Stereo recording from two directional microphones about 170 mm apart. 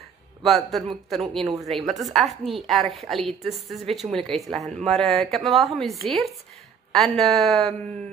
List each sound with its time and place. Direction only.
0.7 s a woman's voice: centre (ahead or behind)
1.4 s a woman's voice: 20° right (ahead or behind)
1.9 s a woman's voice: centre (ahead or behind)